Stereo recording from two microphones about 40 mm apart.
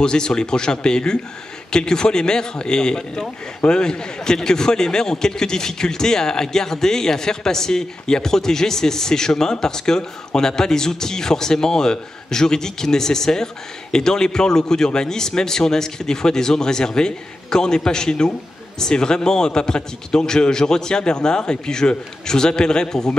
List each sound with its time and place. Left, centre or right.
0.0 s a man's voice: centre